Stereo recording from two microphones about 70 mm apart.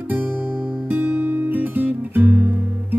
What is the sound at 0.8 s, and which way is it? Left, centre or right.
Music, right.